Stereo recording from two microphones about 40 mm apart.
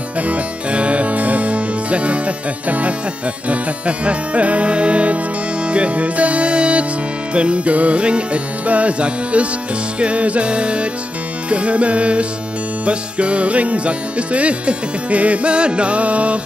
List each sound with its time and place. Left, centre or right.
0.3 s music: right